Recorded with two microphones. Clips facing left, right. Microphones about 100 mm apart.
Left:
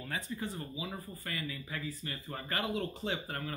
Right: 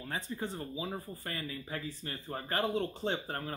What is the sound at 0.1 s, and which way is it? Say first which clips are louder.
Speech: right 1 dB; 35° right (ahead or behind).